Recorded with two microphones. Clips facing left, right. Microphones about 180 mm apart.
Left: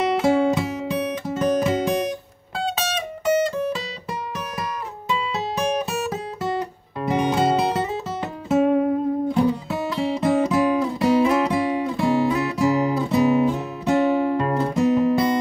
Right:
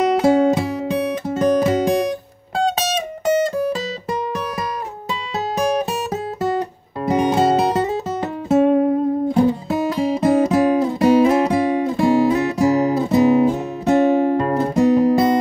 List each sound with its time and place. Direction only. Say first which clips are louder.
0.0 s music: right 4 dB; 40° right (ahead or behind)
7.1 s music: right 4 dB; 40° right (ahead or behind)